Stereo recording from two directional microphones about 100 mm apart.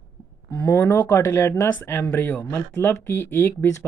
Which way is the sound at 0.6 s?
20° left (ahead or behind).